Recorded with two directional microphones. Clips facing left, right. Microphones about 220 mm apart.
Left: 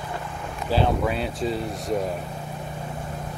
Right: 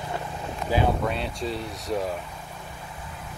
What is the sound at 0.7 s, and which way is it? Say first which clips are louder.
Speech: left 1 dB; 15° right (ahead or behind).